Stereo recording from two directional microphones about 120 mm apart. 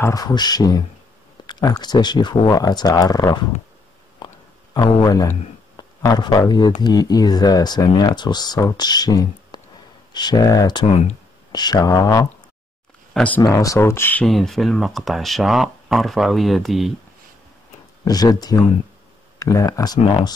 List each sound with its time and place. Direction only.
0.0 s speech: 30° left (ahead or behind)
4.2 s a sound: 40° left (ahead or behind)
4.7 s speech: 35° left (ahead or behind)
10.9 s speech: 65° left (ahead or behind)
11.5 s speech: 35° left (ahead or behind)
13.1 s speech: 10° left (ahead or behind)
13.4 s speech: 30° left (ahead or behind)
14.2 s speech: centre (ahead or behind)
18.0 s speech: 30° left (ahead or behind)